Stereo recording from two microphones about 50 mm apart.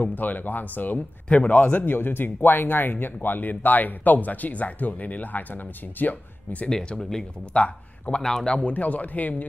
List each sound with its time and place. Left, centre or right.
0.0 s speech: left
6.7 s speech: centre
7.5 s speech: left
8.2 s speech: centre
8.5 s speech: left